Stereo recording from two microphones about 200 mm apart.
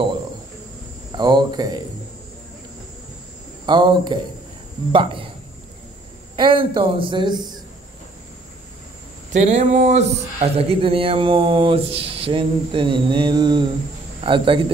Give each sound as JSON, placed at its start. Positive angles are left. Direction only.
{"t": 1.1, "sound": "speech", "side_deg": -20}
{"t": 3.6, "sound": "speech", "side_deg": -20}
{"t": 6.3, "sound": "speech", "side_deg": -25}
{"t": 9.3, "sound": "speech", "side_deg": -35}